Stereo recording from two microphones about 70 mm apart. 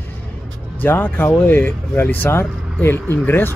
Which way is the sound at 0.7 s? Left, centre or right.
Left.